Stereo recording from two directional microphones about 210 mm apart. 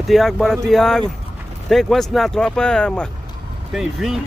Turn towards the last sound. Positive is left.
turn(degrees=0)  # may be behind; listen again after turning